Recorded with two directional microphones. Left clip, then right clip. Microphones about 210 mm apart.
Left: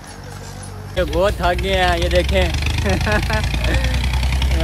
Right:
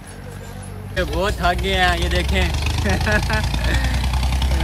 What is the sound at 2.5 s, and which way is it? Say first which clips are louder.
Vehicle: left 2 dB; 15° right (ahead or behind).